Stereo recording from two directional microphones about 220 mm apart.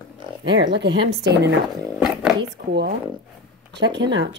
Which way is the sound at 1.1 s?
50° right (ahead or behind).